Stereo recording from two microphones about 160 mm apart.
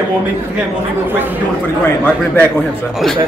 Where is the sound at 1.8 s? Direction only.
10° left (ahead or behind).